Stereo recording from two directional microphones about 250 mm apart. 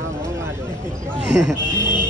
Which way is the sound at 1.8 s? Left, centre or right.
Centre.